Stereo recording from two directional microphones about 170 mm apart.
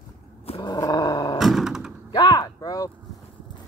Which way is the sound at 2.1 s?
25° left (ahead or behind).